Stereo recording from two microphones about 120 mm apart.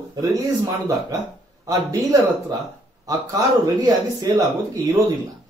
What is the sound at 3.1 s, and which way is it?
A man's voice, 30° right (ahead or behind).